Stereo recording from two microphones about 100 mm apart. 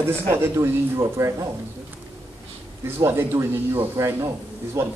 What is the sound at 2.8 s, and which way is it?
Speech, 20° right (ahead or behind).